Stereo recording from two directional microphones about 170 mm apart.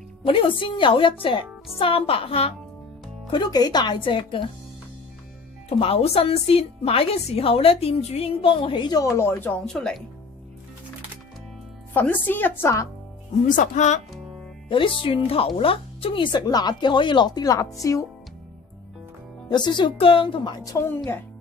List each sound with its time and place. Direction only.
0.2 s a woman's voice: 30° left (ahead or behind)
3.3 s speech: 25° left (ahead or behind)
5.7 s a woman's voice: 35° left (ahead or behind); by 10.0 s 5° left (ahead or behind)
11.9 s speech: 10° left (ahead or behind)
13.5 s speech: 45° left (ahead or behind)
14.7 s speech: 30° left (ahead or behind)
19.5 s speech: 25° left (ahead or behind)